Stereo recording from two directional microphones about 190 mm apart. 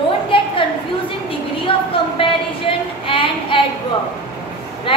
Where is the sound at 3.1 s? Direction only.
25° left (ahead or behind).